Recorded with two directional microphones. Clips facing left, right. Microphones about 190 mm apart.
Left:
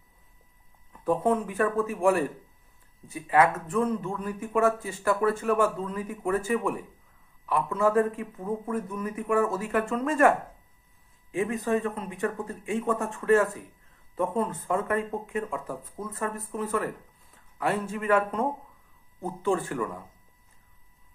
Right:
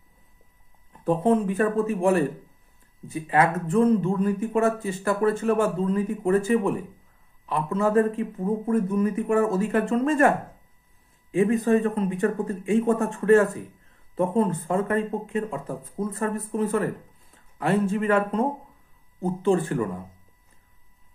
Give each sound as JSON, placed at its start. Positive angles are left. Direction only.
{"t": 1.0, "sound": "speech", "side_deg": -25}
{"t": 11.6, "sound": "speech", "side_deg": -35}